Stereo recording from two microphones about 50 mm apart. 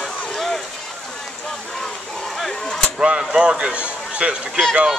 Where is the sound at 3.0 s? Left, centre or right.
Centre.